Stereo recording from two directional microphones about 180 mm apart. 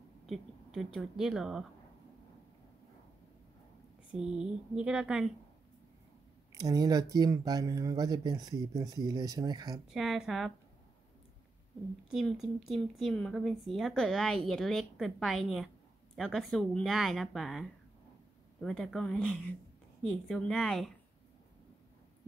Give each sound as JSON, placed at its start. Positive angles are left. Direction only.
{"t": 0.3, "sound": "speech", "side_deg": 0}
{"t": 4.1, "sound": "speech", "side_deg": -5}
{"t": 6.6, "sound": "speech", "side_deg": -20}
{"t": 9.8, "sound": "speech", "side_deg": 0}
{"t": 12.1, "sound": "speech", "side_deg": 0}